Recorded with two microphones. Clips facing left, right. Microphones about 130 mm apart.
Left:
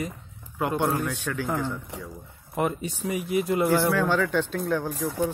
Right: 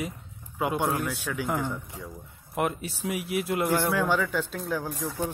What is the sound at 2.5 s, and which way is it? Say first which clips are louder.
Speech: left 2 dB; centre (ahead or behind).